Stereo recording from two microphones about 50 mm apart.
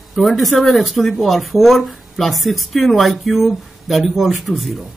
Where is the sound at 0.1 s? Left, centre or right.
Centre.